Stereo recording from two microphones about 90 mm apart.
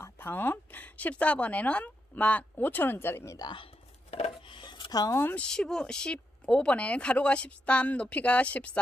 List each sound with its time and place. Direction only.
0.0 s speech: 25° left (ahead or behind)
4.3 s chopping: 65° left (ahead or behind)
5.3 s speech: 10° left (ahead or behind)